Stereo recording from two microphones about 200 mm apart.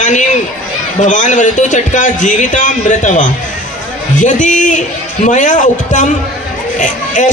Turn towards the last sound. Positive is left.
turn(degrees=40)  # may be behind; listen again after turning